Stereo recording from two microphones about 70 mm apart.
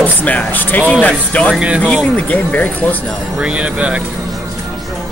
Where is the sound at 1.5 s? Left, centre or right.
Centre.